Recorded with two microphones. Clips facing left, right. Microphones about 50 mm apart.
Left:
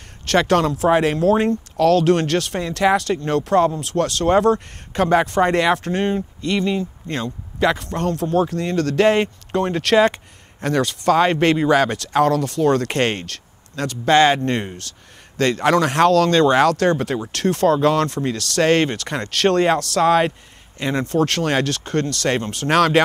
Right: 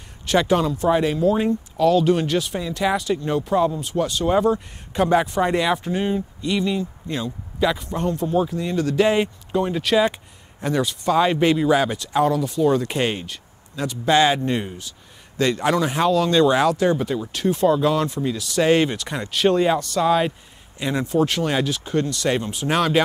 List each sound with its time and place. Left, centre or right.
0.3 s speech: left
5.0 s speech: left
7.6 s speech: left
17.3 s speech: left